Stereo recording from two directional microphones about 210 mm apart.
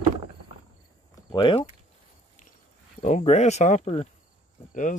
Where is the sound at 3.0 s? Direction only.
35° left (ahead or behind).